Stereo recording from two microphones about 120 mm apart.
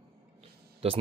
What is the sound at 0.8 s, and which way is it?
Speech, 55° right (ahead or behind).